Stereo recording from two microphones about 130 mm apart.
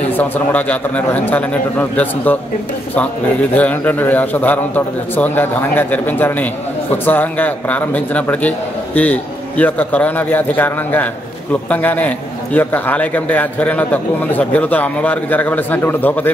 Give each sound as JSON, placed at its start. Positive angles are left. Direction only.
{"t": 0.1, "sound": "a man's voice", "side_deg": 15}
{"t": 3.5, "sound": "a man's voice", "side_deg": 15}